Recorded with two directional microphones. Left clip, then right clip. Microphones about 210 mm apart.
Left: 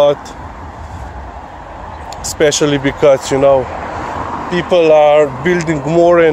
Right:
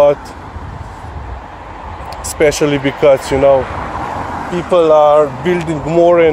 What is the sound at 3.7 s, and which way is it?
Vehicle, 50° right (ahead or behind).